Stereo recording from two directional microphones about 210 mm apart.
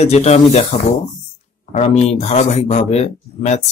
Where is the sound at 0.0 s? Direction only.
30° left (ahead or behind).